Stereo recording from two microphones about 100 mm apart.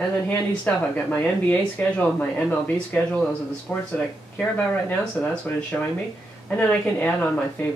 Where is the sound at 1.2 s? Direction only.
15° left (ahead or behind).